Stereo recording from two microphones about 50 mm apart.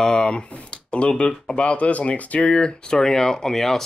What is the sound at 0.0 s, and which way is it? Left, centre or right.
Speech, centre.